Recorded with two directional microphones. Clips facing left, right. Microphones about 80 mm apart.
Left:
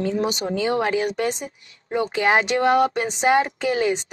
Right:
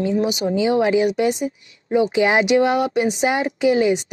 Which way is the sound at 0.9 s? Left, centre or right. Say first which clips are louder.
Right 5 dB; centre.